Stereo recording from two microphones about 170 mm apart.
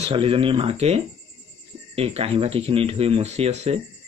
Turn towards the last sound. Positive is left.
turn(degrees=-40)  # may be behind; listen again after turning